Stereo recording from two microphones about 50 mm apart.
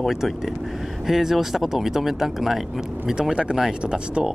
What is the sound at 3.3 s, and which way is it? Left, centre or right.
Speech, centre.